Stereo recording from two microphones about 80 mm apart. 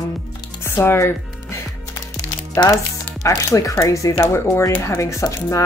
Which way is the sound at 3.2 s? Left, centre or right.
Left.